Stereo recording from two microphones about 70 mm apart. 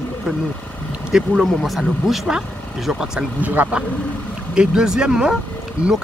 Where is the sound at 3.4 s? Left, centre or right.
Centre.